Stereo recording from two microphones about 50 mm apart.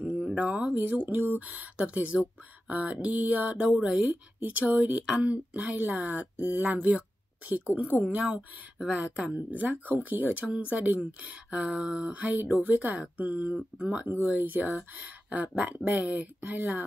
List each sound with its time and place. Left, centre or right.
0.0 s a woman's voice: right
8.8 s speech: right
9.5 s a woman's voice: right
12.1 s a woman's voice: right